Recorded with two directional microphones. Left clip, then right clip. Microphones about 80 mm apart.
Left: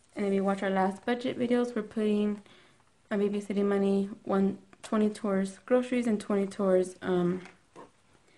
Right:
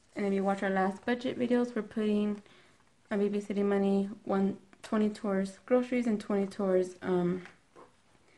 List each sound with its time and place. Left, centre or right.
0.1 s speech: centre; by 7.3 s left